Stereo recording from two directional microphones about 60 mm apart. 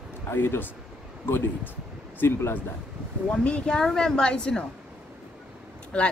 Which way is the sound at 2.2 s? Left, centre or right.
Left.